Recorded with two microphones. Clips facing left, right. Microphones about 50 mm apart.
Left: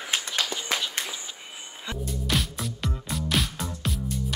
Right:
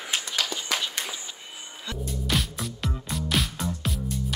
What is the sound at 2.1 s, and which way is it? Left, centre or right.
Music, centre.